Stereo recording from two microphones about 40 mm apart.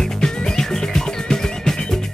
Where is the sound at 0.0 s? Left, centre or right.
Centre.